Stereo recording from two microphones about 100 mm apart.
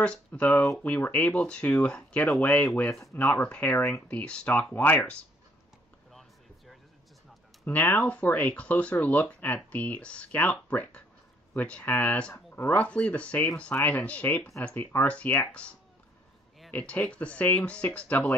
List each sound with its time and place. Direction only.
0.0 s speech: 10° left (ahead or behind)
6.1 s a sound: centre (ahead or behind)
7.6 s speech: 20° left (ahead or behind)
16.7 s speech: 15° left (ahead or behind)